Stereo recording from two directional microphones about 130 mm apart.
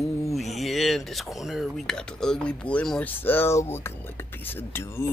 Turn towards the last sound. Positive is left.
turn(degrees=20)  # may be behind; listen again after turning